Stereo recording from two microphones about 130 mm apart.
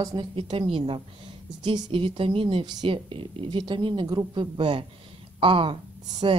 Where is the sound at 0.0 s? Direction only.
30° right (ahead or behind).